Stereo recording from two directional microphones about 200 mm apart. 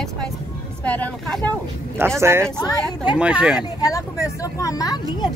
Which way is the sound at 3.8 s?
15° left (ahead or behind).